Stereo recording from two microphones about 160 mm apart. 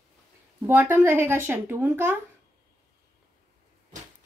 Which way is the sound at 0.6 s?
10° right (ahead or behind).